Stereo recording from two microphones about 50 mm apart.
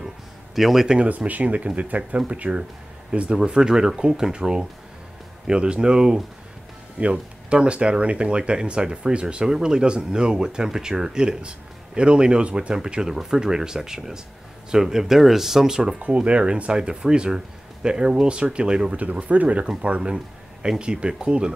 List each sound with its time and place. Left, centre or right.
0.6 s speech: centre
0.8 s speech: right
1.1 s speech: right; by 16.0 s centre
16.0 s speech: right